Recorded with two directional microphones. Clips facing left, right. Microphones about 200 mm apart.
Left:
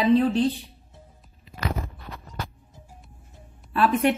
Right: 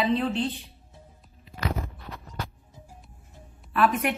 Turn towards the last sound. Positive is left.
turn(degrees=30)  # may be behind; listen again after turning